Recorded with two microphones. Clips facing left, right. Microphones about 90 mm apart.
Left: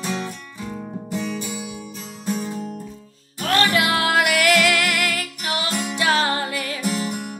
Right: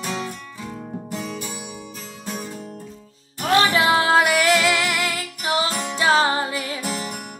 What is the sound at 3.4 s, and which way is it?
Music, 15° right (ahead or behind).